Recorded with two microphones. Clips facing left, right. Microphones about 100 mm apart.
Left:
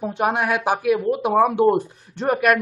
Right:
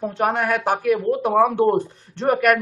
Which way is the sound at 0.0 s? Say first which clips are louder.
Even; 15° left (ahead or behind).